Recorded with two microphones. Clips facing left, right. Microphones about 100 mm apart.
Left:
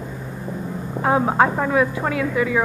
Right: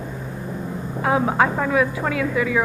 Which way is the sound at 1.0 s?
25° left (ahead or behind).